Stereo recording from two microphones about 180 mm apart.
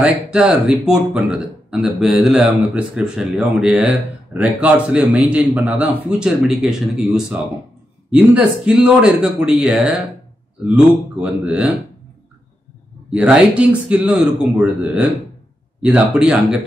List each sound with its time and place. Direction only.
0.0 s speech: 5° right (ahead or behind)
11.1 s speech: 5° right (ahead or behind)
13.1 s speech: 5° right (ahead or behind)